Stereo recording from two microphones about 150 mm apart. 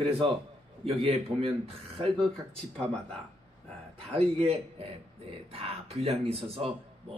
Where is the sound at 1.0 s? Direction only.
40° right (ahead or behind).